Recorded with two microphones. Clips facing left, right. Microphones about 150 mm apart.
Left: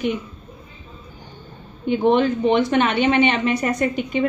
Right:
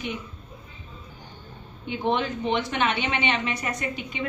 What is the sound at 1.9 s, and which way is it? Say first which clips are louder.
A woman's voice: left 9 dB; 50° left (ahead or behind).